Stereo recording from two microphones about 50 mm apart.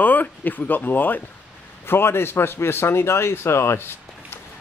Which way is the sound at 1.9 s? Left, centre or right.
Left.